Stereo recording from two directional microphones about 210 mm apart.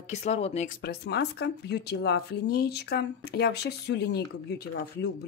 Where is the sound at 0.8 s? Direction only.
50° left (ahead or behind).